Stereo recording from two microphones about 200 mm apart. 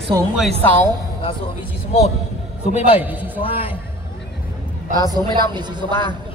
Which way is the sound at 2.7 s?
30° left (ahead or behind).